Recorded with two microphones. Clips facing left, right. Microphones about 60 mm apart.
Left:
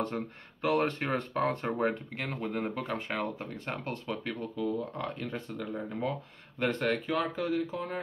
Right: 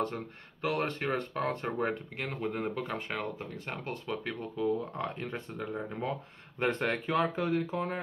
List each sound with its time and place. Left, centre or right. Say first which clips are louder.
0.0 s speech: even; centre
4.6 s speech: right 3 dB; right
6.9 s speech: right 1 dB; right